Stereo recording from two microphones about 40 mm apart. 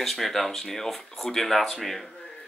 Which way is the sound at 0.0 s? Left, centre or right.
Centre.